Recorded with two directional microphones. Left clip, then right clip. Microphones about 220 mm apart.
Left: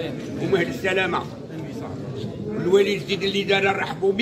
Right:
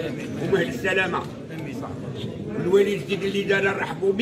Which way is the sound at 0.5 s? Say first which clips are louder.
Even; 15° left (ahead or behind).